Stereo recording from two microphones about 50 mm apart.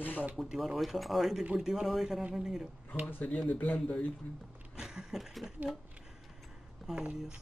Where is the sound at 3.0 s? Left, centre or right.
Left.